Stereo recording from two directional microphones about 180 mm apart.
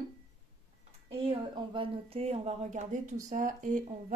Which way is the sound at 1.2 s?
30° right (ahead or behind).